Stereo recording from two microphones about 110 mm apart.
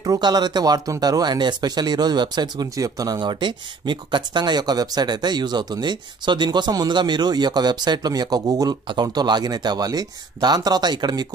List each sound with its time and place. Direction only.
0.0 s speech: 35° right (ahead or behind)